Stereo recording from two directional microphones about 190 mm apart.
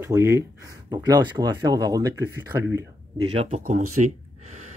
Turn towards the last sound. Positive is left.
turn(degrees=-40)  # may be behind; listen again after turning